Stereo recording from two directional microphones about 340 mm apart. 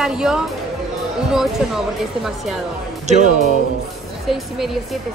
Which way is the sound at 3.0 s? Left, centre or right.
Right.